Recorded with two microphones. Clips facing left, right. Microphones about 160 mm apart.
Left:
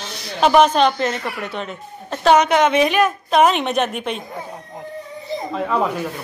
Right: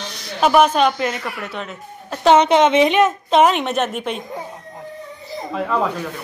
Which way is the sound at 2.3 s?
25° right (ahead or behind).